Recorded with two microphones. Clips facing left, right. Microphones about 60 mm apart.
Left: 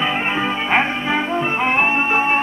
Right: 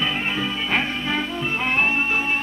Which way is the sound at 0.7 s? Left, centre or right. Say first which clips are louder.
Left 6 dB; left.